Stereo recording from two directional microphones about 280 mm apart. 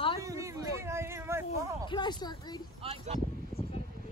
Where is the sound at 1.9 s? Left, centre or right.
Centre.